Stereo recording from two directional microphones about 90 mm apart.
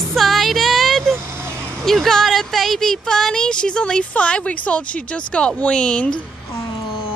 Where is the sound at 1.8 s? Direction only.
5° left (ahead or behind).